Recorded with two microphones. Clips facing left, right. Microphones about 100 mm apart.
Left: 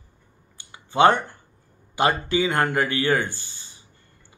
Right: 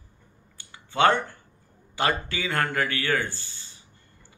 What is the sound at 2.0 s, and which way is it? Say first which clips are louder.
A man's voice: left 5 dB; 20° left (ahead or behind).